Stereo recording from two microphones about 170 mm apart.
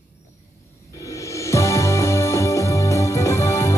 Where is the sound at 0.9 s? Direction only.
20° left (ahead or behind).